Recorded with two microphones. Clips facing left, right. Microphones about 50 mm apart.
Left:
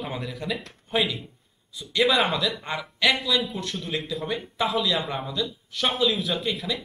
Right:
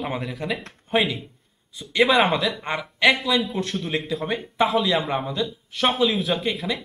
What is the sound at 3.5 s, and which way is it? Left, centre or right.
Speech, right.